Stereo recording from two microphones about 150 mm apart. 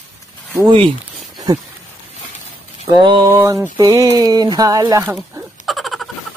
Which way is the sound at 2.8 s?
30° right (ahead or behind).